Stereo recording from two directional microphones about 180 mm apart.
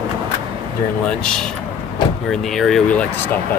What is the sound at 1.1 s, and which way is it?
Speech, 5° left (ahead or behind).